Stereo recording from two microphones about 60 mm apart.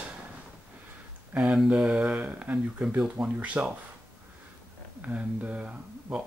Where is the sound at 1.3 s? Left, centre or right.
Centre.